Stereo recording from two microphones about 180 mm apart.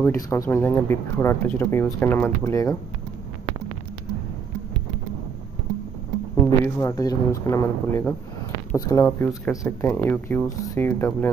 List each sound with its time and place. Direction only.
0.0 s speech: 15° left (ahead or behind)
6.4 s speech: 15° left (ahead or behind)